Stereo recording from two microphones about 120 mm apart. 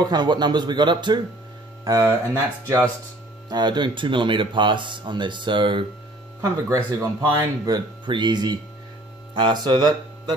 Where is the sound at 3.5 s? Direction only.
40° right (ahead or behind).